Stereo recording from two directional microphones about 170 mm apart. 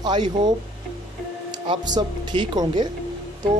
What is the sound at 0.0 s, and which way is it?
Speech, 25° right (ahead or behind).